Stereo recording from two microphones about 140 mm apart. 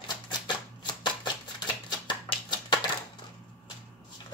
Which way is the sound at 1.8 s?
30° left (ahead or behind).